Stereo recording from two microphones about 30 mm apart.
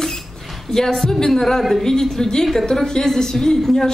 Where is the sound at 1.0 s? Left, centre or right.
Centre.